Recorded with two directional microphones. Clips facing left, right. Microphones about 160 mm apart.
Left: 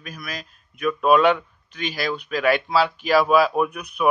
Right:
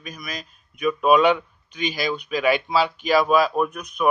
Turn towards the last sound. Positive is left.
turn(degrees=10)  # may be behind; listen again after turning